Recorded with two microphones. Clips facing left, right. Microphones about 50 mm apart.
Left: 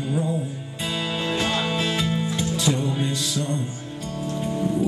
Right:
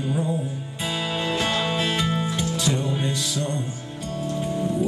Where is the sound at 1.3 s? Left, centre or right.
Centre.